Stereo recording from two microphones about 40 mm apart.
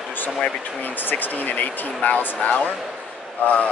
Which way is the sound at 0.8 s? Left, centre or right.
Left.